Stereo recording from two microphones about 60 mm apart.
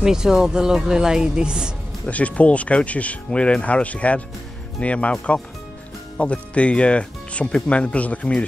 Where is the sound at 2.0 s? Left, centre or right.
Left.